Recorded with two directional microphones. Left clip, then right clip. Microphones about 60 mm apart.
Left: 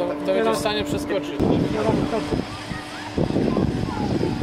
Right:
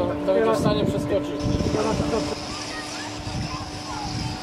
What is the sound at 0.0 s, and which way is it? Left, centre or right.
Speech, left.